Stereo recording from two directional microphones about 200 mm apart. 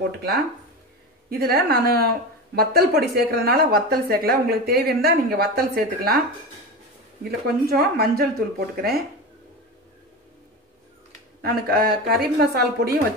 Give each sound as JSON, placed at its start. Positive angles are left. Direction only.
{"t": 1.3, "sound": "speech", "side_deg": -50}
{"t": 7.2, "sound": "speech", "side_deg": -50}
{"t": 11.4, "sound": "speech", "side_deg": -50}